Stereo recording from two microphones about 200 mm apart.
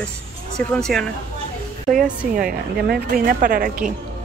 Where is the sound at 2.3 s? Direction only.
45° right (ahead or behind).